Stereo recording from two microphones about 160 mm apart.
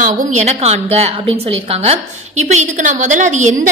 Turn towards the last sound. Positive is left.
turn(degrees=-50)  # may be behind; listen again after turning